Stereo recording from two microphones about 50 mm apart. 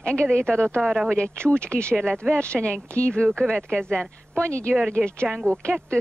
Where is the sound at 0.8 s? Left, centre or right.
Centre.